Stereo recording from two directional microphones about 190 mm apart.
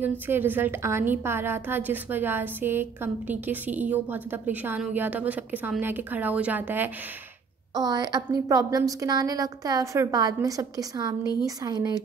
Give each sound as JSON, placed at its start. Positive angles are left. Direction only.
{"t": 0.0, "sound": "a woman's voice", "side_deg": -10}
{"t": 7.7, "sound": "a woman's voice", "side_deg": -20}